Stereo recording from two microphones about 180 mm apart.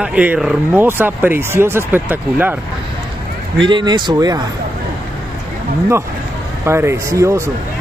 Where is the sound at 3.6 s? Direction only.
25° right (ahead or behind).